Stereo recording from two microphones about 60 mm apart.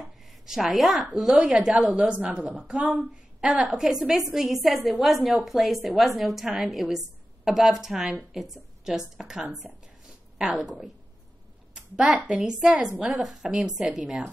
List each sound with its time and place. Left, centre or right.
0.0 s a sound: centre
1.0 s a woman's voice: centre
1.7 s a woman's voice: right
3.7 s a woman's voice: centre
10.6 s a woman's voice: centre
11.7 s a woman's voice: centre